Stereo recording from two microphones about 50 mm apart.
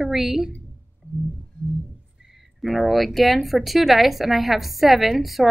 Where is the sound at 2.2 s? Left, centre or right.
Centre.